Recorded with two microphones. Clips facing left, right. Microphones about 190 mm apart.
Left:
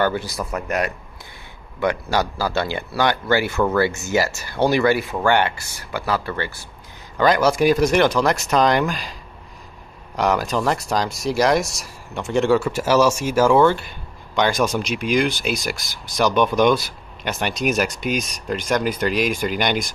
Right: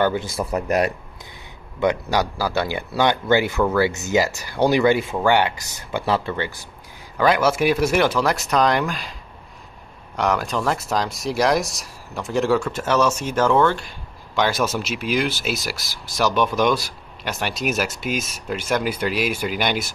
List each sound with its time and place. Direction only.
0.0 s speech: 15° right (ahead or behind)
0.4 s speech: 35° right (ahead or behind)
1.8 s speech: 20° right (ahead or behind)
7.2 s speech: 5° right (ahead or behind)
10.1 s speech: centre (ahead or behind)